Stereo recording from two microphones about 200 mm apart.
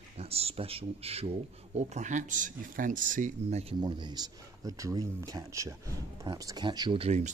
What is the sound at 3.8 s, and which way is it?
Speech, 20° right (ahead or behind).